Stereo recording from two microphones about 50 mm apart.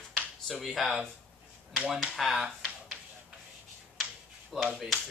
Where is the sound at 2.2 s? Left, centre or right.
Centre.